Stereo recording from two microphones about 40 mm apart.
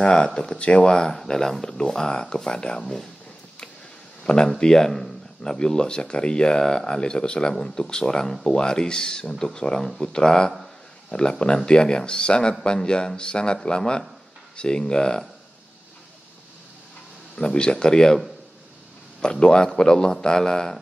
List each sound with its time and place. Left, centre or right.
0.0 s speech: left
1.1 s speech: centre
2.8 s speech: centre
4.2 s speech: centre
17.4 s speech: left
19.4 s speech: centre